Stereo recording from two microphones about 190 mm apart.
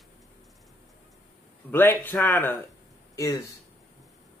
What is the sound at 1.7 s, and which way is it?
Speech, 10° left (ahead or behind).